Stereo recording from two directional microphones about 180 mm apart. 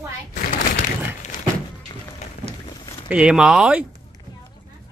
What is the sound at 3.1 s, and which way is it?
Speech, 5° right (ahead or behind).